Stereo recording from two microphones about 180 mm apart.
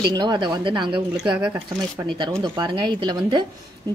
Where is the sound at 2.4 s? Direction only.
25° right (ahead or behind).